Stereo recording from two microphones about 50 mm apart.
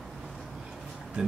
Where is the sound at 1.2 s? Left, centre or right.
Right.